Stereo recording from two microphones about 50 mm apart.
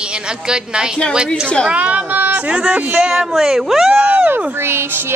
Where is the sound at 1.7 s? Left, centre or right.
Right.